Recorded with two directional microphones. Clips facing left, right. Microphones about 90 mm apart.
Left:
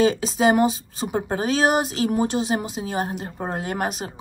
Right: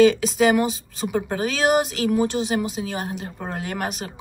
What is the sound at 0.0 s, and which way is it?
Speech, 35° left (ahead or behind).